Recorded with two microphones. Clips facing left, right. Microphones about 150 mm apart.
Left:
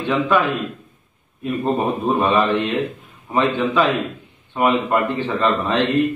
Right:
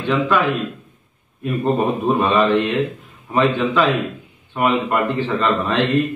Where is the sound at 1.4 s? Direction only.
15° left (ahead or behind).